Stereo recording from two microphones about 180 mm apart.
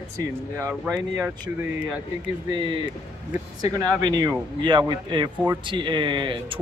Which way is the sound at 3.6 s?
20° right (ahead or behind).